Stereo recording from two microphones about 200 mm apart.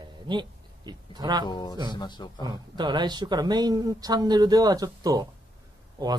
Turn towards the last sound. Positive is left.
turn(degrees=-20)  # may be behind; listen again after turning